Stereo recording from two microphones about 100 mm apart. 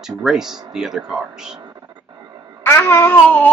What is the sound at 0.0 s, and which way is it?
A woman's voice, 5° right (ahead or behind).